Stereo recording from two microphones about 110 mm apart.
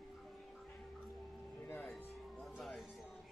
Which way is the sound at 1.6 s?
20° left (ahead or behind).